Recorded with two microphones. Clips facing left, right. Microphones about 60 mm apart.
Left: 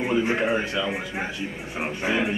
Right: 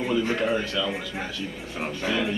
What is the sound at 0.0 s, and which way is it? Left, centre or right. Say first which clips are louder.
A man's voice: left 2 dB; left.